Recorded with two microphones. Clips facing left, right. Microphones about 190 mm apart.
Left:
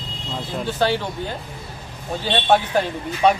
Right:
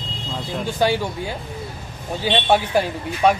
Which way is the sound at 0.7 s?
10° right (ahead or behind).